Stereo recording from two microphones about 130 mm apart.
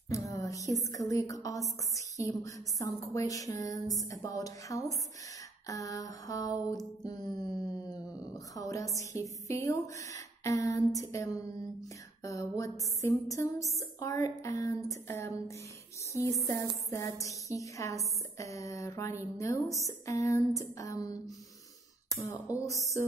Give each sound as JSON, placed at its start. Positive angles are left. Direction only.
{"t": 0.1, "sound": "a sound", "side_deg": 25}
{"t": 0.7, "sound": "speech", "side_deg": 25}
{"t": 7.1, "sound": "mantra", "side_deg": 30}
{"t": 8.2, "sound": "speech", "side_deg": 25}
{"t": 16.9, "sound": "speech", "side_deg": 25}